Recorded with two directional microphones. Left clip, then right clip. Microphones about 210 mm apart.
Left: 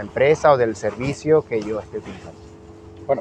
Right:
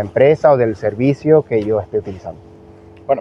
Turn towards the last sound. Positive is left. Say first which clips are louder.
# right 4 dB
turn(degrees=-20)  # may be behind; listen again after turning